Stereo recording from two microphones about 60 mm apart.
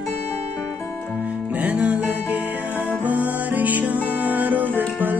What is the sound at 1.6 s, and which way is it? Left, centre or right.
Music, right.